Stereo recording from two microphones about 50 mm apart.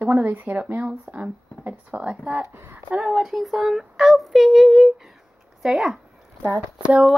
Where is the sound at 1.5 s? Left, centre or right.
Left.